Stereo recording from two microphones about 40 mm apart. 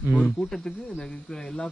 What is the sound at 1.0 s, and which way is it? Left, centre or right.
Speech, centre.